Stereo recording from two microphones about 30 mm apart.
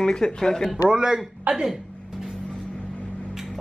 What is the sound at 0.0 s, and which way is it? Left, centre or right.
Speech, left.